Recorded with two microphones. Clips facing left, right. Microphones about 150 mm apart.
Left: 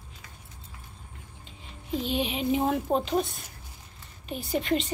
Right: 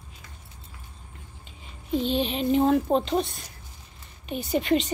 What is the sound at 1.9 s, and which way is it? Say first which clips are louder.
A woman's voice: right 4 dB; 5° left (ahead or behind).